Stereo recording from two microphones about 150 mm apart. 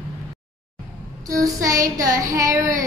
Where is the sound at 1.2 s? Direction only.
20° right (ahead or behind).